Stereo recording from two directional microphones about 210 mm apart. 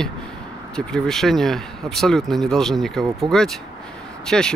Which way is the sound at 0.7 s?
5° left (ahead or behind).